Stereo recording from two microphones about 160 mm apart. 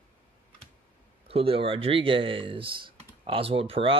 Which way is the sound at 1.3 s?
35° right (ahead or behind).